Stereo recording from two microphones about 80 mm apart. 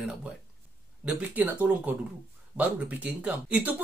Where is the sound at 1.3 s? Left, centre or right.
Right.